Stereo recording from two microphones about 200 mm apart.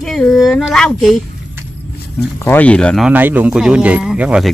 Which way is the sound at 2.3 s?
10° left (ahead or behind).